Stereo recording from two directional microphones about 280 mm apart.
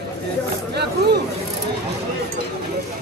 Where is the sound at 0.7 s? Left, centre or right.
Right.